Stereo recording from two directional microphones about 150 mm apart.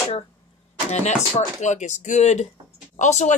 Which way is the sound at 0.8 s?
50° left (ahead or behind).